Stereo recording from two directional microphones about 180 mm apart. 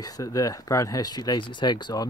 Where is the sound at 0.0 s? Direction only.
20° left (ahead or behind).